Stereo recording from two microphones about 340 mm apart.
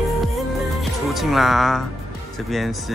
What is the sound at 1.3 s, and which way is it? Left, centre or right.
Speech, centre.